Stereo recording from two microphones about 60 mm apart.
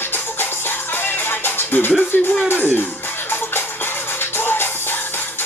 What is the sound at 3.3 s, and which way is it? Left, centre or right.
Music, left.